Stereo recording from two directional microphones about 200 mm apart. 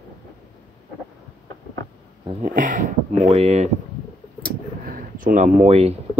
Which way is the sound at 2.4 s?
40° right (ahead or behind).